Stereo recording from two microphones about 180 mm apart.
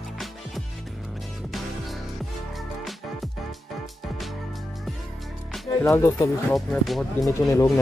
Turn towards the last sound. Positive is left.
turn(degrees=15)  # may be behind; listen again after turning